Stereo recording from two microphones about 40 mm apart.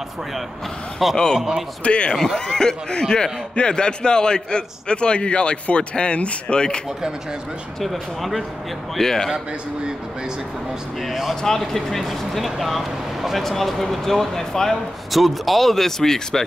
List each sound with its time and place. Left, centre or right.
1.1 s speech: centre
1.8 s a man's voice: left
2.1 s a man's voice: centre
7.8 s speech: centre
8.9 s speech: centre
11.0 s speech: centre
15.0 s speech: centre